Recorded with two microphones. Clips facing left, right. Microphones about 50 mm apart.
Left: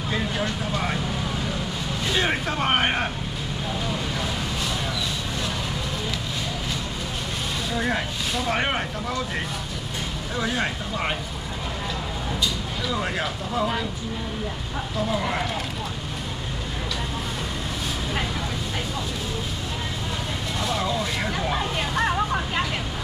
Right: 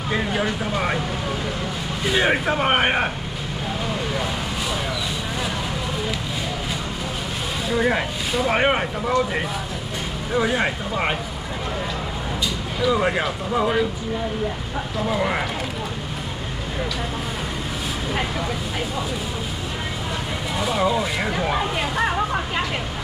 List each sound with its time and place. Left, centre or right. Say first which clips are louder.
0.1 s vehicle: right 4 dB; centre
2.0 s speech: right 5 dB; centre
7.7 s speech: right 6 dB; centre
12.8 s speech: right 7 dB; centre
15.0 s speech: right 4 dB; centre
20.6 s speech: right 5 dB; centre